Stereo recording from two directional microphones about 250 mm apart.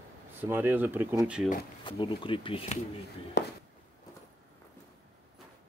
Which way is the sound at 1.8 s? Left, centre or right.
Centre.